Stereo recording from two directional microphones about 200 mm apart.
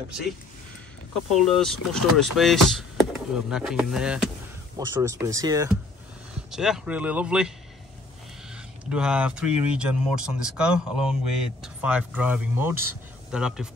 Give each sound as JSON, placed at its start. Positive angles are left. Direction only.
{"t": 1.3, "sound": "speech", "side_deg": 0}
{"t": 4.7, "sound": "speech", "side_deg": -15}
{"t": 6.5, "sound": "speech", "side_deg": 0}
{"t": 8.8, "sound": "speech", "side_deg": -5}